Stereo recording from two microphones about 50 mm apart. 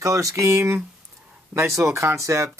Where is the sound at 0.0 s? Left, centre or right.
Right.